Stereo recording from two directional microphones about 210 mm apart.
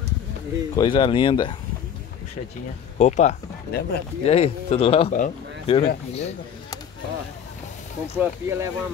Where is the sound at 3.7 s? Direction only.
50° left (ahead or behind).